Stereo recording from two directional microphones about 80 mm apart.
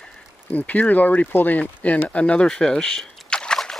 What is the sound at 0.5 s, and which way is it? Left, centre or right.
Speech, centre.